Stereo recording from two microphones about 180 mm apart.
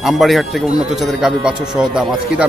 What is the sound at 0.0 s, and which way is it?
Speech, centre (ahead or behind).